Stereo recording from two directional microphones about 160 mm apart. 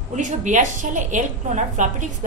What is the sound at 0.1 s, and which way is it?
A woman's voice, 50° right (ahead or behind).